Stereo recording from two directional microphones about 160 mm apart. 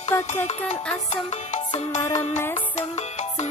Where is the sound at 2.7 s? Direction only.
45° left (ahead or behind).